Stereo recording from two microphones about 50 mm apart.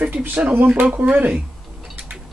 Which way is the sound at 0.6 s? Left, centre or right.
Right.